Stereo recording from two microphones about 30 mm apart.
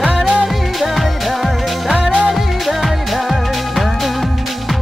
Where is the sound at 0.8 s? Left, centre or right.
Centre.